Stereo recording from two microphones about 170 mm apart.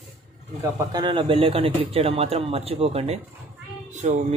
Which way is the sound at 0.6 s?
25° right (ahead or behind).